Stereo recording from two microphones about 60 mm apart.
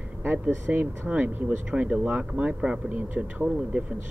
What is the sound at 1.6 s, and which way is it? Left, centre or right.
Speech, centre.